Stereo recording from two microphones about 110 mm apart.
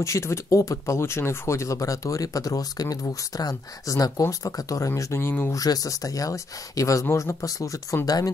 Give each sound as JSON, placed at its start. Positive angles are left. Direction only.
{"t": 0.0, "sound": "speech", "side_deg": 25}
{"t": 5.6, "sound": "speech", "side_deg": 35}